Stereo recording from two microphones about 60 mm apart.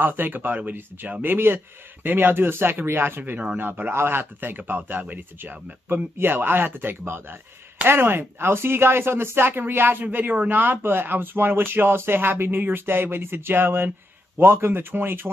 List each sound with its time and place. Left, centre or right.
0.0 s speech: right